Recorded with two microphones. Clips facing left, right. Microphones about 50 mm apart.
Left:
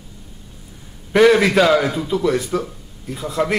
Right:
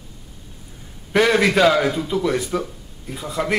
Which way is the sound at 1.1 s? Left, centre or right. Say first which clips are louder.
Left 4 dB; centre.